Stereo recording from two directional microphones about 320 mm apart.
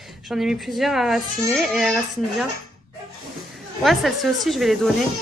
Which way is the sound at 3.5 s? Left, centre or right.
Centre.